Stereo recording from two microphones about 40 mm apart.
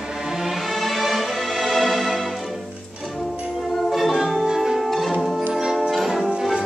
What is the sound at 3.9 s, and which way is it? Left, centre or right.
Music, centre.